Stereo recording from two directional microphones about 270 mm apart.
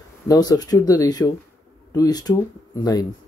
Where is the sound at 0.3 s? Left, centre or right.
Centre.